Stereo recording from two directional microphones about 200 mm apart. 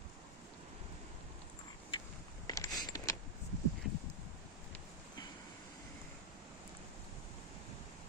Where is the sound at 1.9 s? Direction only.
20° left (ahead or behind).